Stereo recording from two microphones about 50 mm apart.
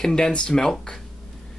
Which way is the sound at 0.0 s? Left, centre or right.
Centre.